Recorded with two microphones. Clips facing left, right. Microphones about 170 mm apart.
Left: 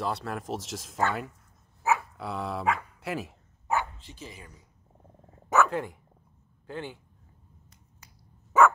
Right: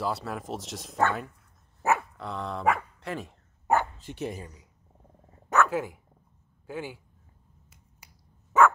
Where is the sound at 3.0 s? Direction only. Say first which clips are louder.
Left 2 dB; 5° left (ahead or behind).